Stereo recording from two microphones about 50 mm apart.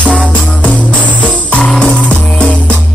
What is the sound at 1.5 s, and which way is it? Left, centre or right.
Music, centre.